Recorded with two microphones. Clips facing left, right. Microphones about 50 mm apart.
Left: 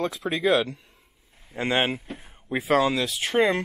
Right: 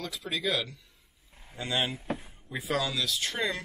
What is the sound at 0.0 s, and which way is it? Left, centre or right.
Speech, left.